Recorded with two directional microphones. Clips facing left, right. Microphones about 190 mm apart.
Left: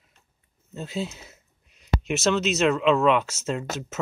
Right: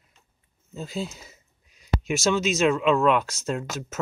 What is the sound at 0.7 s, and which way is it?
Speech, centre (ahead or behind).